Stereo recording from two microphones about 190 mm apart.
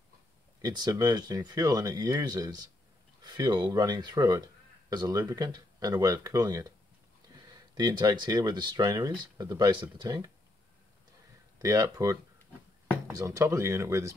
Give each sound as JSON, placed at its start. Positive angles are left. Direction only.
{"t": 0.6, "sound": "speech", "side_deg": -20}
{"t": 7.7, "sound": "speech", "side_deg": -20}
{"t": 11.5, "sound": "speech", "side_deg": -20}